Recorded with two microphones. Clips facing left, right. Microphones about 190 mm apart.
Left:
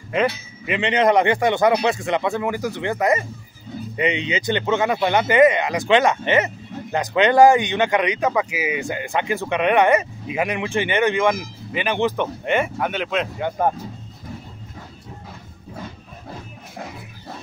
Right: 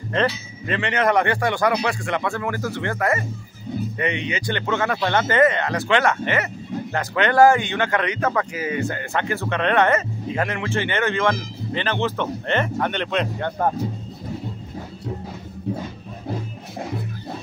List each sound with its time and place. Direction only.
0.7 s speech: 20° left (ahead or behind)